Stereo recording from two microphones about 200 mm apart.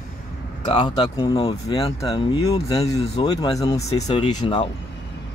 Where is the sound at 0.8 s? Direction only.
20° left (ahead or behind).